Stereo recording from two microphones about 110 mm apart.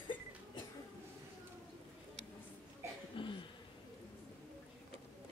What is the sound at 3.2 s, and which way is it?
Throat clearing, 50° left (ahead or behind).